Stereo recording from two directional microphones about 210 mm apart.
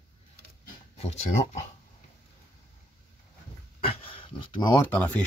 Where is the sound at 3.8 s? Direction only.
25° left (ahead or behind); by 5.2 s 10° left (ahead or behind).